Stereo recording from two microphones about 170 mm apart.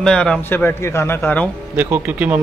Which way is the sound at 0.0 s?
5° left (ahead or behind).